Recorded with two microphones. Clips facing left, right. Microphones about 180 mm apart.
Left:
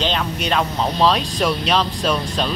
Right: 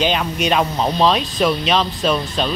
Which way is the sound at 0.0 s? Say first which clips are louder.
Right 3 dB; 10° right (ahead or behind).